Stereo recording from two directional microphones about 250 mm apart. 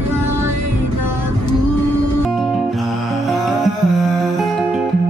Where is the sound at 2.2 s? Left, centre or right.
Centre.